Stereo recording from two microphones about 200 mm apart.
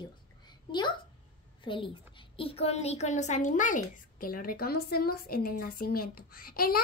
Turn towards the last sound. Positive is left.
turn(degrees=50)  # may be behind; listen again after turning